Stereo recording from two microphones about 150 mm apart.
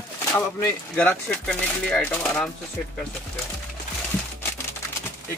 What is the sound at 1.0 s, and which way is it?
Speech, 10° left (ahead or behind).